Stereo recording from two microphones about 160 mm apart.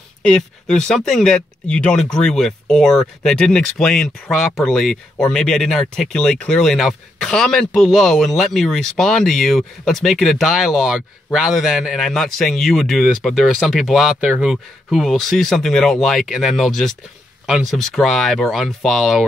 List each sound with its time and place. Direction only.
0.2 s speech: 5° left (ahead or behind)